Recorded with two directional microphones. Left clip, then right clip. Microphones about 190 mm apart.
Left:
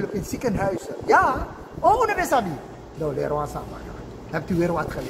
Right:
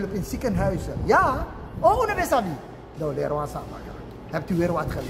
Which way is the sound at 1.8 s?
15° right (ahead or behind).